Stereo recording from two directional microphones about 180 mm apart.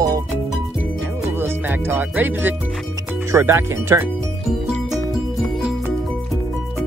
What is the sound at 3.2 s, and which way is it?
Speech, 15° right (ahead or behind).